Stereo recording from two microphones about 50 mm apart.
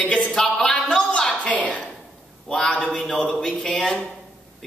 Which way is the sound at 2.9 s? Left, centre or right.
Centre.